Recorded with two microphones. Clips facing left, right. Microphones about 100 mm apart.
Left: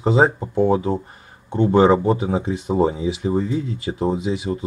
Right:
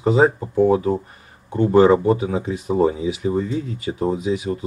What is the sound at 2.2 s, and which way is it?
Speech, 25° left (ahead or behind).